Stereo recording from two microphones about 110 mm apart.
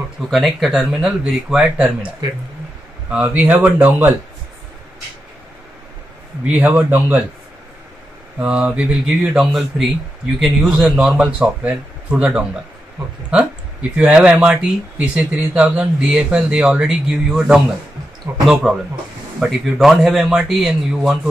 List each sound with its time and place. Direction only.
0.3 s speech: centre (ahead or behind)
6.4 s speech: 15° right (ahead or behind)
8.4 s speech: 10° right (ahead or behind)
13.9 s speech: 10° right (ahead or behind)